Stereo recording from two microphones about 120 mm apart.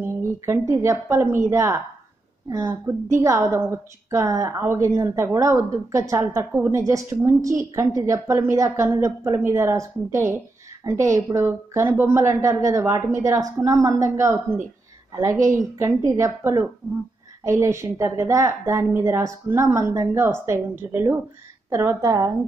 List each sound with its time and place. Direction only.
0.0 s a woman's voice: 20° right (ahead or behind)
15.3 s a woman's voice: 90° right
15.8 s a woman's voice: 25° right (ahead or behind)